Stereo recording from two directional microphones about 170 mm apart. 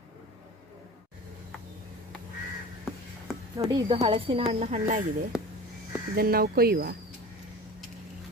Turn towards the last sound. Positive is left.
turn(degrees=-65)  # may be behind; listen again after turning